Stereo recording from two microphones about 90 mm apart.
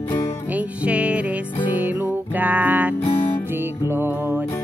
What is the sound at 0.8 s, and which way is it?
Music, 15° right (ahead or behind).